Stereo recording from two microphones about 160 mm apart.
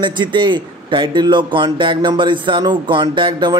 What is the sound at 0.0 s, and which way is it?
A man's voice, 30° right (ahead or behind).